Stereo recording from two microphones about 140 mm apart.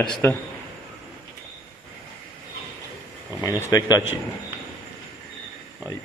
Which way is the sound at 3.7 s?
25° left (ahead or behind).